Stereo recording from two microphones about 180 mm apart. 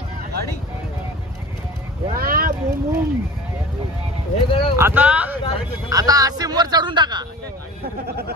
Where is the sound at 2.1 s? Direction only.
55° right (ahead or behind).